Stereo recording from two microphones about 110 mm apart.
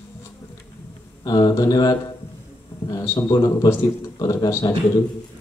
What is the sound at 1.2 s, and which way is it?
Speech, 35° left (ahead or behind).